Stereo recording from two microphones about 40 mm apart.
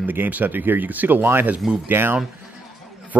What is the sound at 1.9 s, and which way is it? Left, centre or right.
Speech, right.